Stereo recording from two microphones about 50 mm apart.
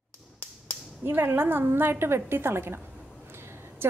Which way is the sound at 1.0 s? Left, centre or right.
Right.